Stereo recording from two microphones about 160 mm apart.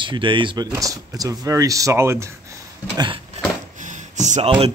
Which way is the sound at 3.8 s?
50° right (ahead or behind).